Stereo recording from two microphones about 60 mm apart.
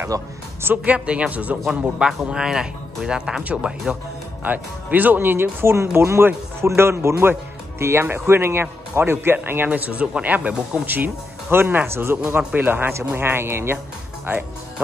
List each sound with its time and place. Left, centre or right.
0.1 s speech: right
0.8 s a man's voice: right
1.7 s speech: centre
4.5 s speech: right
5.8 s speech: right
9.7 s a man's voice: right
11.5 s speech: right
12.5 s speech: right